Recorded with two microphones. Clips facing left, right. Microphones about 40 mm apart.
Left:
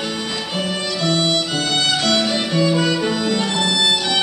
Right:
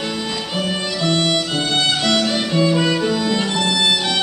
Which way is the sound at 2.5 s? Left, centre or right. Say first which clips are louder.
Right 1 dB; centre.